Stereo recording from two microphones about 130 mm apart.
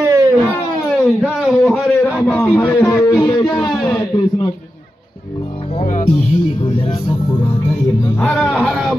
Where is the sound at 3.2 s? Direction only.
35° left (ahead or behind).